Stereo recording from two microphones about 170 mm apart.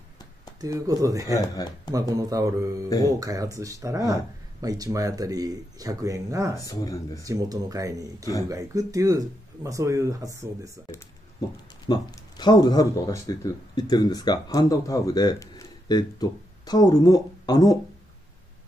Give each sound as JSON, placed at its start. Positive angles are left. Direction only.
{"t": 0.6, "sound": "speech", "side_deg": -20}
{"t": 1.3, "sound": "speech", "side_deg": 20}
{"t": 1.9, "sound": "speech", "side_deg": -20}
{"t": 6.5, "sound": "speech", "side_deg": 20}
{"t": 7.2, "sound": "speech", "side_deg": -20}
{"t": 11.9, "sound": "speech", "side_deg": 25}